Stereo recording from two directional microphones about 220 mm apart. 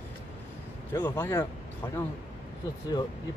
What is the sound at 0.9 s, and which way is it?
Speech, 10° left (ahead or behind).